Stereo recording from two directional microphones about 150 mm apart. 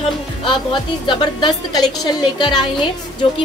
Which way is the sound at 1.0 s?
30° left (ahead or behind).